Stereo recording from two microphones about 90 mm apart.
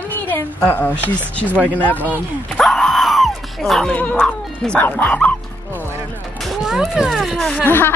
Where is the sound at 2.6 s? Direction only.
5° left (ahead or behind).